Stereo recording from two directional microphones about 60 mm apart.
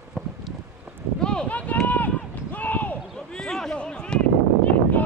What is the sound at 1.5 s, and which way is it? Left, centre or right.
Run, left.